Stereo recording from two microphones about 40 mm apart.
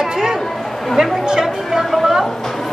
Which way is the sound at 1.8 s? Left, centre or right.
Centre.